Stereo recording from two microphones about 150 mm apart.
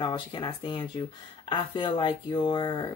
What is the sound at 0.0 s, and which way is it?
Speech, 30° left (ahead or behind).